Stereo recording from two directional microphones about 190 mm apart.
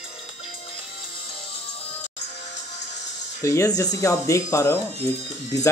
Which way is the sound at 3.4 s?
15° left (ahead or behind).